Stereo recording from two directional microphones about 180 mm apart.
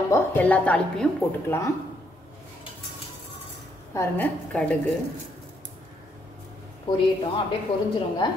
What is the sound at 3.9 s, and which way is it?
Speech, 15° left (ahead or behind).